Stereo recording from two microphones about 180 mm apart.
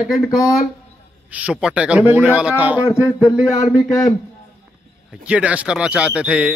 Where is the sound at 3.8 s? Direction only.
15° left (ahead or behind).